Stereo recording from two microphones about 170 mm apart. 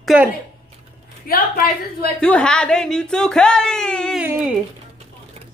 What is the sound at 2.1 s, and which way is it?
Speech, 5° left (ahead or behind).